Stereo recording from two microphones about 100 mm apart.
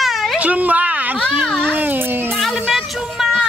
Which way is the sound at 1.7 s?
20° right (ahead or behind).